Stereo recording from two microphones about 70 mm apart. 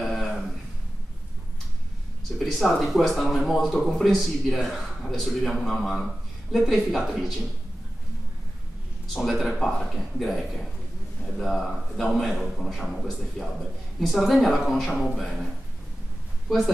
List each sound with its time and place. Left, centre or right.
0.0 s a sound: centre
2.3 s speech: centre
9.6 s a man's voice: centre
16.4 s speech: centre